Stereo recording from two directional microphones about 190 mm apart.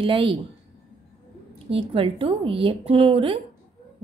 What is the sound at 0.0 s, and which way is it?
Speech, 25° right (ahead or behind).